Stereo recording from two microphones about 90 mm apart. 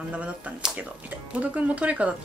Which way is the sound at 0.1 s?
15° right (ahead or behind).